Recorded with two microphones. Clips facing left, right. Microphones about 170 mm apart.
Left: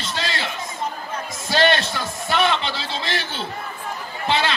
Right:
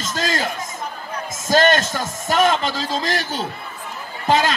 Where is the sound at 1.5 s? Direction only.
45° right (ahead or behind).